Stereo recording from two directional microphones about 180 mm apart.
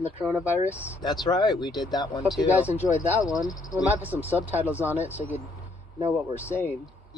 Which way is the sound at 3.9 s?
10° right (ahead or behind).